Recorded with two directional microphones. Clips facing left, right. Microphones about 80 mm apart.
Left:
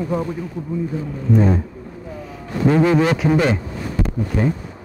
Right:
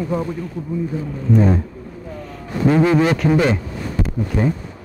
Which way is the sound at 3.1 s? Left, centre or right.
Centre.